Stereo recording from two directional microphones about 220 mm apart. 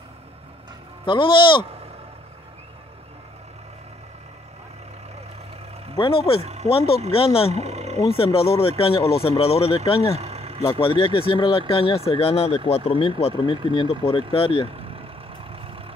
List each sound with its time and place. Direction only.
1.0 s speech: 20° left (ahead or behind)
5.9 s speech: 25° left (ahead or behind)
6.4 s speech: 30° right (ahead or behind)
6.7 s speech: 25° left (ahead or behind)
7.5 s a sound: 30° right (ahead or behind)
8.1 s speech: 25° left (ahead or behind)
10.1 s vehicle: 30° right (ahead or behind)
10.6 s speech: 25° left (ahead or behind)
14.8 s vehicle: 25° right (ahead or behind)